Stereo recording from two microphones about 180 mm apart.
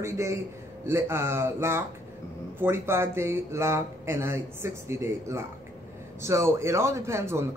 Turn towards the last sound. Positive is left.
turn(degrees=-15)  # may be behind; listen again after turning